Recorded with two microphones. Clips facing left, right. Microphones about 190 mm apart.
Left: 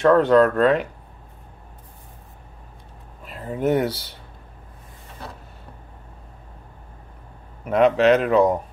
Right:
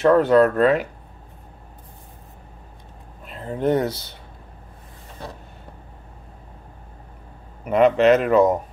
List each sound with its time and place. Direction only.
0.0 s speech: 5° right (ahead or behind)
3.3 s speech: 5° left (ahead or behind)
7.6 s speech: centre (ahead or behind)